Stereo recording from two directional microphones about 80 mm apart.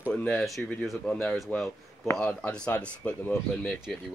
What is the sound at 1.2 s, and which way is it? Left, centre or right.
Speech, centre.